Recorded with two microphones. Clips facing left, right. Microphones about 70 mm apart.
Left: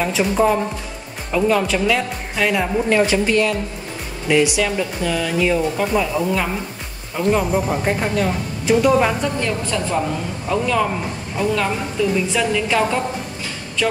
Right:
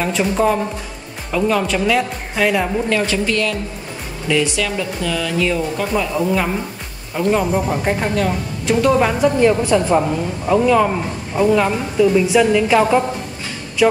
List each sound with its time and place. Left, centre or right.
0.0 s a woman's voice: centre
2.9 s speech: centre
6.1 s a woman's voice: centre
9.4 s a woman's voice: centre